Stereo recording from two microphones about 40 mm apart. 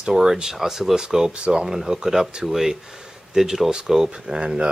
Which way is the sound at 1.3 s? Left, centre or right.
Right.